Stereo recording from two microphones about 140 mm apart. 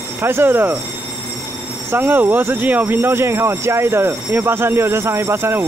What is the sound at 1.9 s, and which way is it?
Speech, 15° right (ahead or behind).